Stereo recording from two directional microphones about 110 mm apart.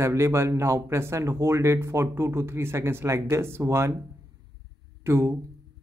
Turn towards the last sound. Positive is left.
turn(degrees=-25)  # may be behind; listen again after turning